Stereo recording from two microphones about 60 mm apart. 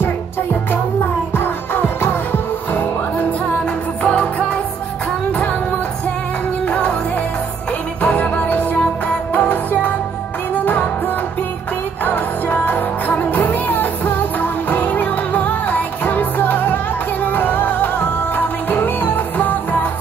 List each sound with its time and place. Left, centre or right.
1.3 s music: left
4.0 s music: centre
6.6 s music: centre
8.0 s music: left
12.0 s music: left